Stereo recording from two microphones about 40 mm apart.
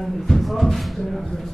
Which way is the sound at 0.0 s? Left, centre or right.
Centre.